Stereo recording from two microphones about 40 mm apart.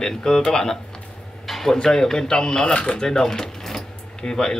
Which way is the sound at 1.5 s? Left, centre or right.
Centre.